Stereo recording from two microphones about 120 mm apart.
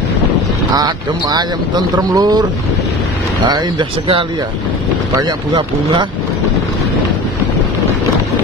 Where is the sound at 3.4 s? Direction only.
40° right (ahead or behind).